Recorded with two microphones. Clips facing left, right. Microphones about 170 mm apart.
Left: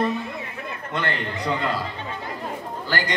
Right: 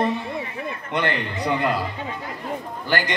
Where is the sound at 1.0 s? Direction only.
20° right (ahead or behind).